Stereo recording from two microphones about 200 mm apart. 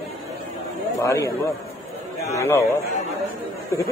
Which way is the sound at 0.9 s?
15° left (ahead or behind).